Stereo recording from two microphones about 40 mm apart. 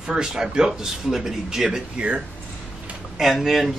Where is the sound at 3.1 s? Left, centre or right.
Centre.